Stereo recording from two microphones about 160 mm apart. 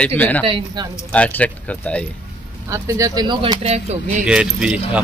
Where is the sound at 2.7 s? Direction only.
20° right (ahead or behind).